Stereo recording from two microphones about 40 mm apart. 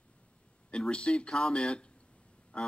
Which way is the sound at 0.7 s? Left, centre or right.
Left.